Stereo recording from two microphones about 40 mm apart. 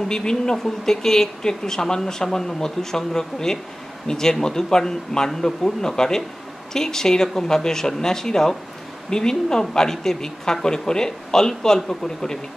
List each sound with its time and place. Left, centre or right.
0.1 s speech: centre